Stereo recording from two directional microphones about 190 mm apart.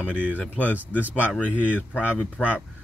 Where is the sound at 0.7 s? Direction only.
10° right (ahead or behind).